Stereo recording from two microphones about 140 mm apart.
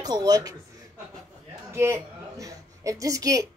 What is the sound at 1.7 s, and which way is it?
A woman's voice, 20° right (ahead or behind).